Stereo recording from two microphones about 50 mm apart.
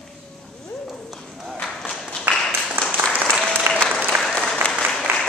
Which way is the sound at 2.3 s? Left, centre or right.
Right.